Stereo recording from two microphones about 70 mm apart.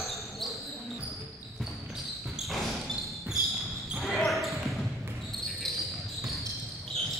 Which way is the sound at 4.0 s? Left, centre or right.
Centre.